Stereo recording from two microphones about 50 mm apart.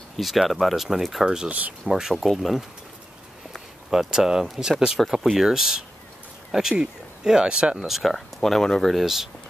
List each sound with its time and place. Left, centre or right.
0.2 s speech: centre
1.2 s speech: centre
3.9 s speech: centre
7.8 s speech: centre
8.9 s speech: centre